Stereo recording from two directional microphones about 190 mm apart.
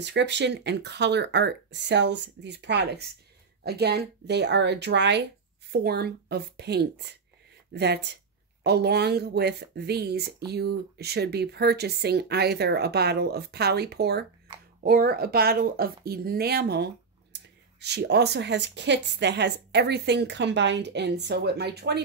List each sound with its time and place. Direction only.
0.0 s a woman's voice: 65° right (ahead or behind)